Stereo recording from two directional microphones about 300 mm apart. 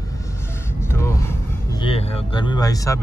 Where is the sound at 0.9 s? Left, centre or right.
Centre.